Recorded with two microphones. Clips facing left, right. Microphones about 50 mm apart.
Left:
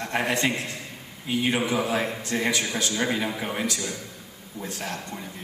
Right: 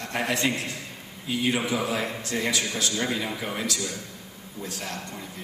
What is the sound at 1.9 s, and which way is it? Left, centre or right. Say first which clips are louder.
A man's voice: left 2 dB; left.